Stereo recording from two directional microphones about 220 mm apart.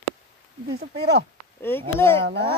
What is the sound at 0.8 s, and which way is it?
Speech, 50° right (ahead or behind).